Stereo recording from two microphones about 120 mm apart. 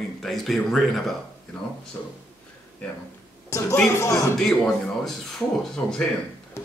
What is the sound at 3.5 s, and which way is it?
Speech, 25° left (ahead or behind).